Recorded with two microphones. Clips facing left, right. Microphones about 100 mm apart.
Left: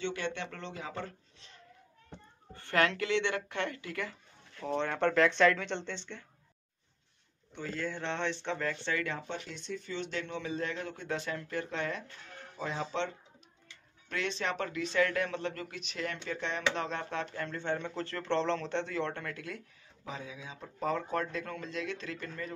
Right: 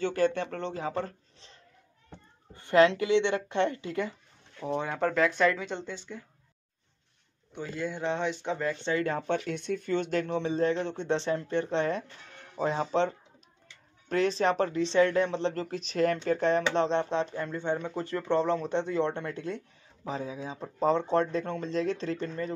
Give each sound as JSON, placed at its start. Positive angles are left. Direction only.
{"t": 0.0, "sound": "speech", "side_deg": -40}
{"t": 2.5, "sound": "speech", "side_deg": -20}
{"t": 4.6, "sound": "speech", "side_deg": -10}
{"t": 7.5, "sound": "speech", "side_deg": -15}
{"t": 9.3, "sound": "speech", "side_deg": -60}